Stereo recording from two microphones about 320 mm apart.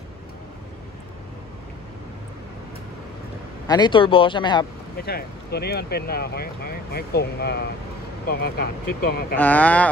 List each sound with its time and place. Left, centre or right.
3.6 s speech: centre
4.9 s speech: left
9.4 s speech: centre